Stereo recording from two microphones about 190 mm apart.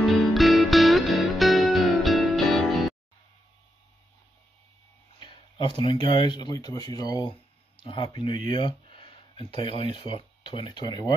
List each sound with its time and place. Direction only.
0.0 s music: centre (ahead or behind)
5.2 s a sound: 25° left (ahead or behind)
5.8 s speech: 25° left (ahead or behind)